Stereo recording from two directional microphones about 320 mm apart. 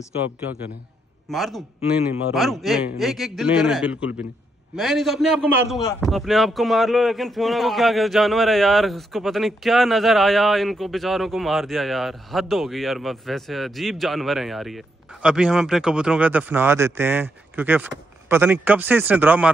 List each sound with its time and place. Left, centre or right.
1.3 s speech: centre